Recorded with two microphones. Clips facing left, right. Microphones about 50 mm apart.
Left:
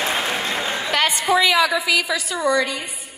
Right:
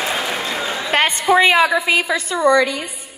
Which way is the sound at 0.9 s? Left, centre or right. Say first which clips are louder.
Right 4 dB; right.